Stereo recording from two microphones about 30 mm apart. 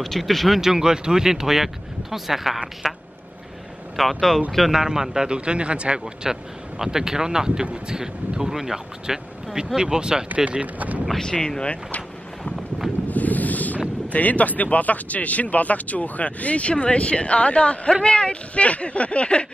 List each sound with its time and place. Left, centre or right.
0.0 s speech: centre
0.6 s speech: centre
4.8 s speech: centre
5.4 s speech: right
6.2 s speech: centre
9.8 s speech: right
10.2 s speech: right
11.3 s speech: left
11.6 s speech: left
13.1 s wind noise: left
14.1 s speech: left